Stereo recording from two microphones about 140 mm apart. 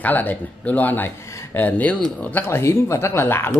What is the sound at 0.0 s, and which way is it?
Speech, 15° left (ahead or behind).